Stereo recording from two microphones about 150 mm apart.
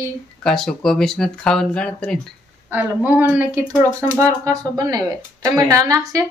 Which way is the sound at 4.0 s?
20° right (ahead or behind).